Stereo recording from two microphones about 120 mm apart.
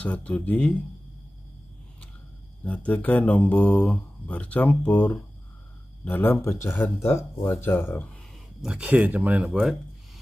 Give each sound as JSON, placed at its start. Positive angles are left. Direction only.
{"t": 0.0, "sound": "speech", "side_deg": 10}
{"t": 2.6, "sound": "speech", "side_deg": 10}
{"t": 8.6, "sound": "speech", "side_deg": -10}
{"t": 9.5, "sound": "speech", "side_deg": 0}